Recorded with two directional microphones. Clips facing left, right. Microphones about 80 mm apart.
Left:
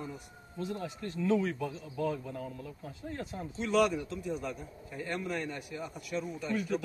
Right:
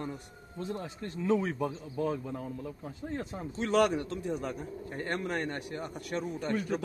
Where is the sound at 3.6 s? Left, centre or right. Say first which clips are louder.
Right 1 dB; right.